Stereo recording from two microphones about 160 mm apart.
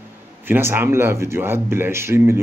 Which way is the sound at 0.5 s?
15° right (ahead or behind).